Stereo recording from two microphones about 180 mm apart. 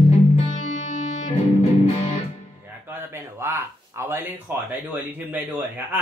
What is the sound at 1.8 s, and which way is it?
Music, 35° left (ahead or behind).